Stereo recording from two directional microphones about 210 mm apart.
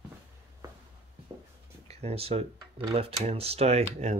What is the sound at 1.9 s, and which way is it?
Speech, 30° right (ahead or behind).